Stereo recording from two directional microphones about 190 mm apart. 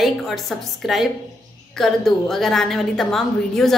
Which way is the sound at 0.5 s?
Centre (ahead or behind).